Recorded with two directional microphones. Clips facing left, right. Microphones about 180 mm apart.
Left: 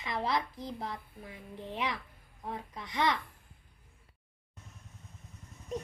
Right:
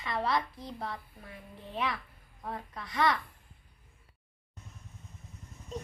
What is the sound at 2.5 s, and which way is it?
Speech, 20° left (ahead or behind).